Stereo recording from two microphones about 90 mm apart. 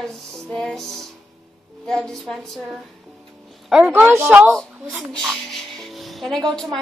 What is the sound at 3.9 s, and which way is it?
Speech, 25° right (ahead or behind).